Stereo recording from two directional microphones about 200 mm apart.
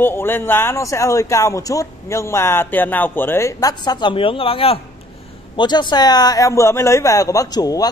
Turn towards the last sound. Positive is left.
turn(degrees=20)  # may be behind; listen again after turning